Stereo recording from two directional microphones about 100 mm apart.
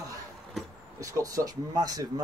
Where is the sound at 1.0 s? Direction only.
35° right (ahead or behind).